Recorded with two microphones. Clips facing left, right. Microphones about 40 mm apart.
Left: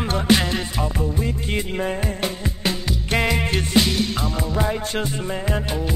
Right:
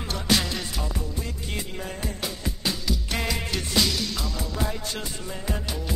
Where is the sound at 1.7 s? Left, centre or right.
Left.